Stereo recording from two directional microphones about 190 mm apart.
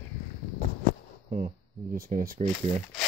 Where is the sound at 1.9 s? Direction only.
50° right (ahead or behind).